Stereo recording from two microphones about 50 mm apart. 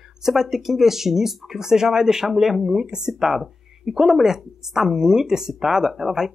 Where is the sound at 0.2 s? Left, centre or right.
Centre.